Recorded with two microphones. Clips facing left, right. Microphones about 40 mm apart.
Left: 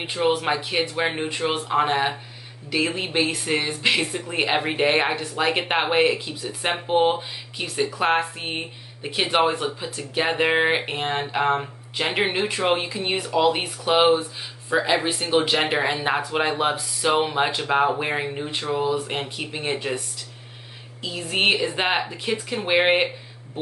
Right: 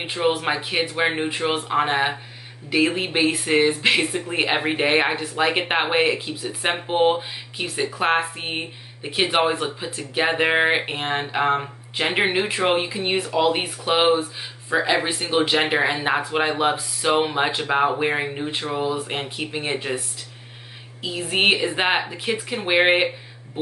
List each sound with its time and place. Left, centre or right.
0.0 s speech: centre
21.0 s speech: centre